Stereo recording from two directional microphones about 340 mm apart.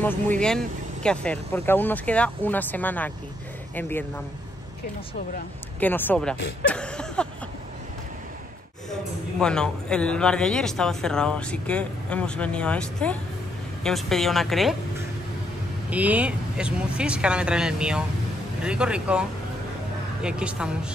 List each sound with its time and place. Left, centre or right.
0.0 s speech: centre
5.8 s speech: centre
6.7 s a sound: centre
9.4 s speech: centre
15.9 s speech: centre